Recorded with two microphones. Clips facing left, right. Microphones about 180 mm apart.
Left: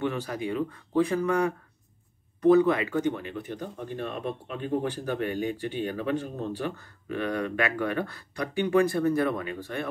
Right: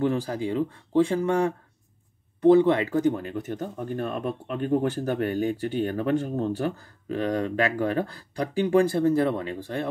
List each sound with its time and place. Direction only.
0.0 s speech: 35° right (ahead or behind)